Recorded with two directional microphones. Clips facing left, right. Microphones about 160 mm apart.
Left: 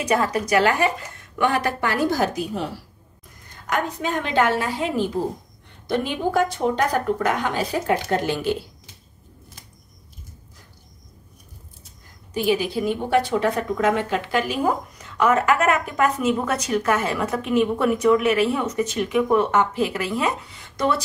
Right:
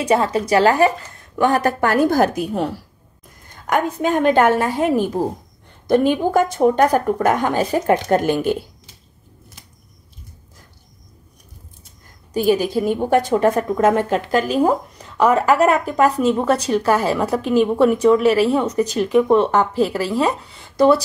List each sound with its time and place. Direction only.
0.0 s a woman's voice: 30° right (ahead or behind); by 8.5 s 50° right (ahead or behind)
12.4 s a woman's voice: 40° right (ahead or behind)